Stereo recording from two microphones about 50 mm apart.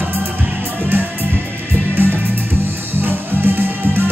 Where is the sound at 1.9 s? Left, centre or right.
Right.